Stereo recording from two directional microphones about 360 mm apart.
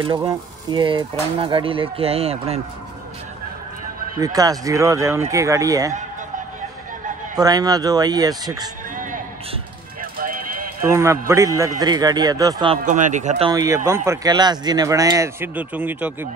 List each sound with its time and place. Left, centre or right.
0.0 s speech: centre
4.2 s speech: centre
7.3 s speech: centre
8.9 s a sound: right
10.1 s clip-clop: right
10.8 s speech: centre